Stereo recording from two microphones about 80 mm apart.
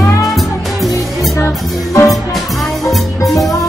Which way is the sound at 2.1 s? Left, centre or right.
Centre.